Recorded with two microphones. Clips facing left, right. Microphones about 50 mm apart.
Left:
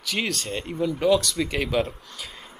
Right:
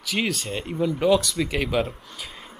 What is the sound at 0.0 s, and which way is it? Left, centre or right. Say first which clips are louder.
Speech: right 2 dB; centre.